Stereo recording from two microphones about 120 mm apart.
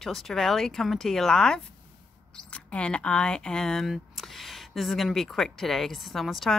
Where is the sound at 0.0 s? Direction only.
Centre (ahead or behind).